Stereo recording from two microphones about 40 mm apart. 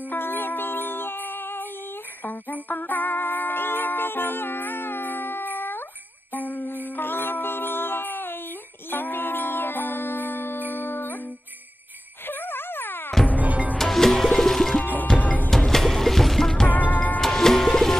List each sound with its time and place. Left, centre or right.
0.1 s music: left
2.2 s music: left
6.3 s music: left
12.3 s a sound: left
13.4 s music: right
13.7 s music: centre
15.2 s music: left
15.5 s music: centre
16.9 s music: left
17.2 s music: centre